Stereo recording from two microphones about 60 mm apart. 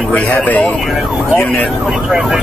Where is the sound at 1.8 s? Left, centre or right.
Centre.